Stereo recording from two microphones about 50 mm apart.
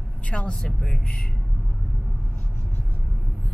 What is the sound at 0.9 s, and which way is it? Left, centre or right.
Speech, centre.